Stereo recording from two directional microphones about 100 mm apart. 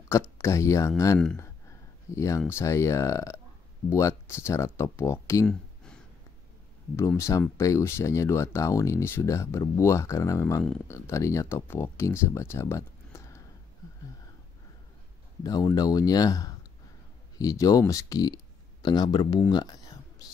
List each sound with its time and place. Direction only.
0.4 s speech: 30° left (ahead or behind)
7.0 s speech: 30° left (ahead or behind)
15.4 s speech: 40° left (ahead or behind)